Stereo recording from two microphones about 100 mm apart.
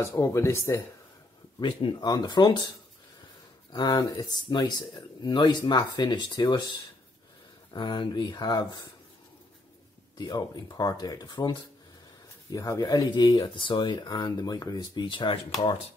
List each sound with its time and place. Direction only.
0.0 s speech: 30° left (ahead or behind)
1.6 s speech: 55° left (ahead or behind)
2.0 s speech: 45° left (ahead or behind)
3.7 s speech: 40° left (ahead or behind)
7.7 s speech: 50° left (ahead or behind)
10.1 s speech: 45° left (ahead or behind)
12.4 s speech: 35° left (ahead or behind); by 15.4 s 60° left (ahead or behind)